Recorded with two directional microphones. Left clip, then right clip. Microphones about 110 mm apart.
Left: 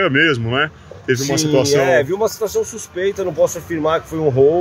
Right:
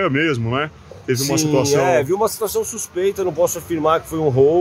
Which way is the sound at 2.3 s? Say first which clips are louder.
Left 2 dB; 65° right (ahead or behind).